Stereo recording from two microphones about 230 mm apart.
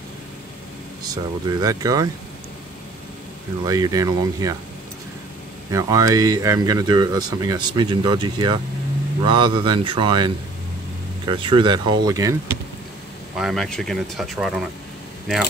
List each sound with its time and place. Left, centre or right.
1.0 s speech: centre
3.6 s speech: centre
5.7 s speech: centre
13.4 s speech: centre